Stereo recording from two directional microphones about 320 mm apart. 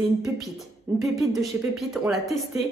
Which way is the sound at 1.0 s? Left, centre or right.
Centre.